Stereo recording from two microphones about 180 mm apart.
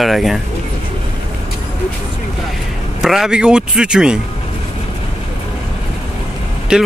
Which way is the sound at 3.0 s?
Centre (ahead or behind).